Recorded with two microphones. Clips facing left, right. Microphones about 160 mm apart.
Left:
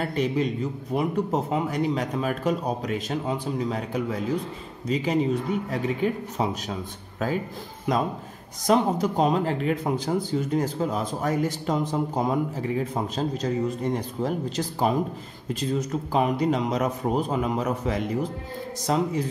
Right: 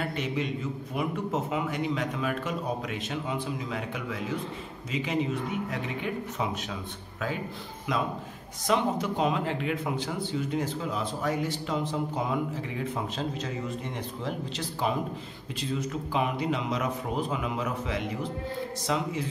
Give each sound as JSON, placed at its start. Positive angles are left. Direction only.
{"t": 0.0, "sound": "speech", "side_deg": 40}